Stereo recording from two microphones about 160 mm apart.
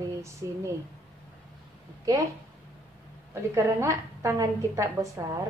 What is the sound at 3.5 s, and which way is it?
A woman's voice, 15° right (ahead or behind).